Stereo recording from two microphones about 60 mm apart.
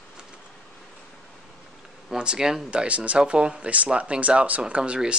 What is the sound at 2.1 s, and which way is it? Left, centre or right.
Speech, centre.